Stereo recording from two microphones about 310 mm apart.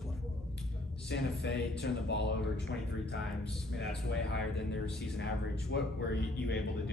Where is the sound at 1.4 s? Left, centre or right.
Left.